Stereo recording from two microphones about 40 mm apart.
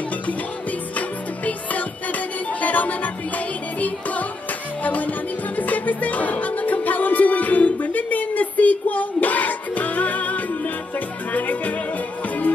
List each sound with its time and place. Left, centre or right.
0.3 s music: left